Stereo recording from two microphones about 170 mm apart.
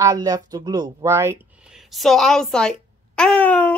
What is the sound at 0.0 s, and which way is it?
Speech, 20° right (ahead or behind).